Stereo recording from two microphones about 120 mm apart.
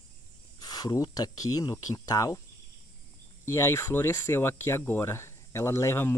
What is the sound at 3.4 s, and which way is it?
Speech, 20° left (ahead or behind).